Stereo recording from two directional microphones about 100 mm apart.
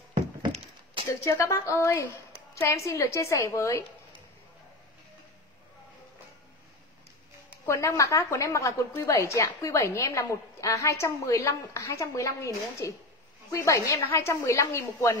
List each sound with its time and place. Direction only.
1.2 s a woman's voice: 30° left (ahead or behind)
7.6 s a woman's voice: 30° left (ahead or behind)